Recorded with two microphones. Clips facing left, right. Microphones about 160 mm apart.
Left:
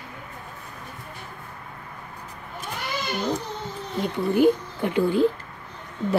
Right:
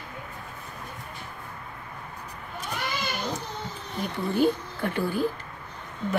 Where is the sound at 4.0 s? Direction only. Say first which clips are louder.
Left 4 dB; 15° left (ahead or behind).